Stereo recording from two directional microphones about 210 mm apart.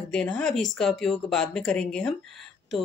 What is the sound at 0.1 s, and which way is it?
Speech, 5° left (ahead or behind).